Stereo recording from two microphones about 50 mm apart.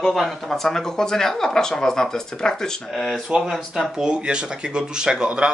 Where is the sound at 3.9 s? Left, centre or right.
Centre.